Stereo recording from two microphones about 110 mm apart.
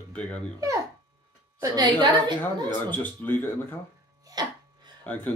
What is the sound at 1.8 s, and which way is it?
Speech, 45° right (ahead or behind).